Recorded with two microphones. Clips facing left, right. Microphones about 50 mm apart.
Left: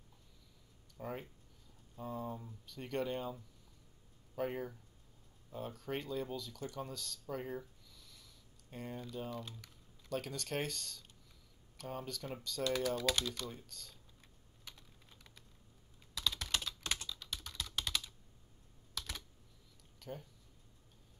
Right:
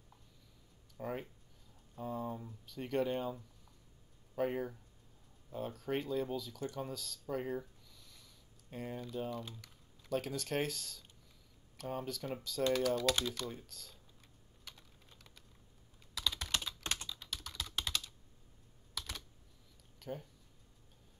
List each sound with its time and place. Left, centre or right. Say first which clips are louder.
0.9 s speech: right 3 dB; centre
12.7 s speech: right 2 dB; centre
13.4 s speech: right 2 dB; centre
16.2 s computer keyboard: even; centre
17.0 s typing: even; centre
17.5 s typing: right 2 dB; centre
18.9 s computer keyboard: even; centre
20.0 s speech: right 3 dB; centre